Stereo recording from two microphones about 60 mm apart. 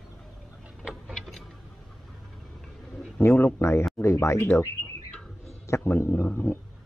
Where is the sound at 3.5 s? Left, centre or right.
Left.